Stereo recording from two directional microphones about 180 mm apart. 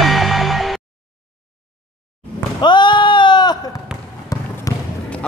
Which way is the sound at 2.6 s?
25° left (ahead or behind).